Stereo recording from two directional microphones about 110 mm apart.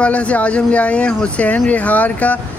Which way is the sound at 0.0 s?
10° left (ahead or behind).